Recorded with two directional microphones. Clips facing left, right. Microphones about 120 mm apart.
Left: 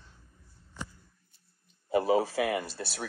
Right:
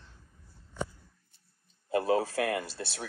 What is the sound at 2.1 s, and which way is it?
Speech, 10° left (ahead or behind).